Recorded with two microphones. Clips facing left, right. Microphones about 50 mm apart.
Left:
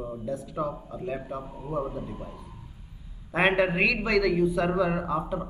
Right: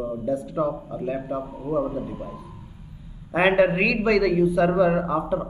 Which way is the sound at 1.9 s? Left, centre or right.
Right.